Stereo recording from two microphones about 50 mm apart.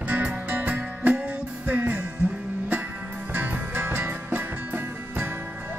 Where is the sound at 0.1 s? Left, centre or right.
Right.